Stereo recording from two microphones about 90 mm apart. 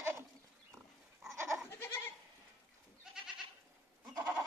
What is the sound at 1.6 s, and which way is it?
Goat, 25° left (ahead or behind).